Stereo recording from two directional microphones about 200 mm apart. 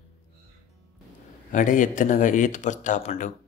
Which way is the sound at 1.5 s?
40° left (ahead or behind).